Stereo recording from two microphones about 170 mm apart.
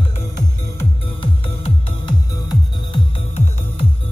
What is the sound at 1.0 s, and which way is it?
Music, 30° left (ahead or behind).